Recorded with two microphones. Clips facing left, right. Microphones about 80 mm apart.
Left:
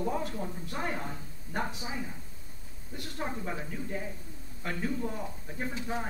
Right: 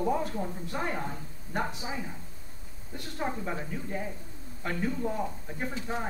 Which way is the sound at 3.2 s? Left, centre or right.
Centre.